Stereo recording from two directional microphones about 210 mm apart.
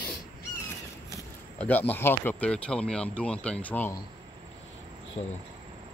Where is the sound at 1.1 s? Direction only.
10° left (ahead or behind).